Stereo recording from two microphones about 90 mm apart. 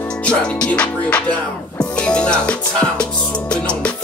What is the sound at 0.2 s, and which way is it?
Music, 10° left (ahead or behind).